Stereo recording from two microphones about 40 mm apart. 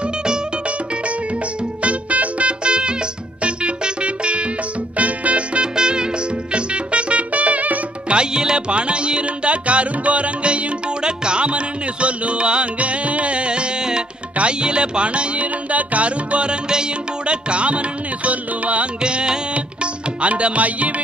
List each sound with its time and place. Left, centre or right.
1.8 s music: right
5.8 s music: right
8.1 s music: right
18.9 s music: right